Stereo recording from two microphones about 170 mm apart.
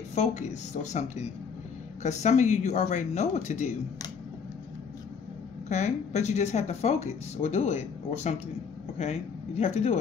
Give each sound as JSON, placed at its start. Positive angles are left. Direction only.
{"t": 0.1, "sound": "speech", "side_deg": 40}
{"t": 5.7, "sound": "speech", "side_deg": 40}
{"t": 9.6, "sound": "speech", "side_deg": 45}